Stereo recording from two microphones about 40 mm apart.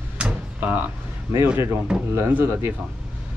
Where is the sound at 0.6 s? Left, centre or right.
Right.